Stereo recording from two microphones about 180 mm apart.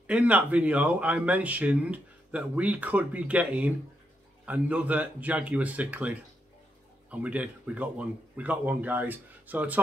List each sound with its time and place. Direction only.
0.0 s speech: 5° right (ahead or behind)